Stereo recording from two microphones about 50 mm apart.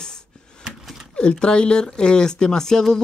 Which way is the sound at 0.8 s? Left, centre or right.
Centre.